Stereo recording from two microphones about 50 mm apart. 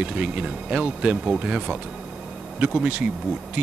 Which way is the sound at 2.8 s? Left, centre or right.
Right.